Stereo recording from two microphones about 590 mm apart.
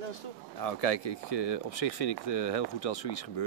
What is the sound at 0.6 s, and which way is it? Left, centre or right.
Speech, left.